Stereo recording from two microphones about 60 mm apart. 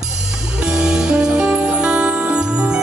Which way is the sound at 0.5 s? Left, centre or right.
Centre.